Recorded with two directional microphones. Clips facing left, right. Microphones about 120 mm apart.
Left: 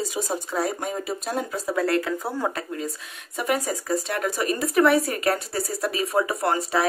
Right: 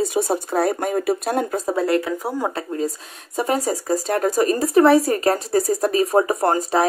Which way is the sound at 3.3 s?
35° right (ahead or behind).